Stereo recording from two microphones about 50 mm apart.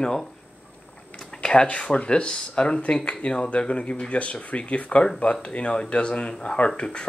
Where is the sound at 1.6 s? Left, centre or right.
Left.